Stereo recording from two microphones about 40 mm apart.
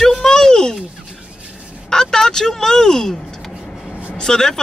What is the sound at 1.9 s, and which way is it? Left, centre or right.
Speech, centre.